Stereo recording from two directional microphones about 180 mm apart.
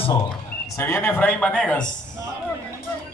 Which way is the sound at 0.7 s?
15° left (ahead or behind).